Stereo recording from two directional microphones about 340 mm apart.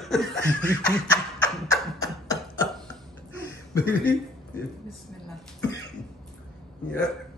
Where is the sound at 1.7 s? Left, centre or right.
Centre.